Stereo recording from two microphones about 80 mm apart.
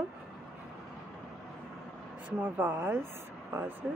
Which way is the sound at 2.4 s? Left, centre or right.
Right.